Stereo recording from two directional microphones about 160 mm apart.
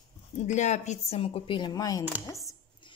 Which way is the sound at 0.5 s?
45° left (ahead or behind).